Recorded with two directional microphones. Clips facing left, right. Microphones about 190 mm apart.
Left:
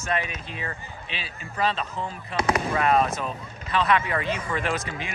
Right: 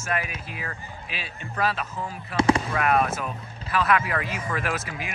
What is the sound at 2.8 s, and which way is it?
Speech, 25° left (ahead or behind).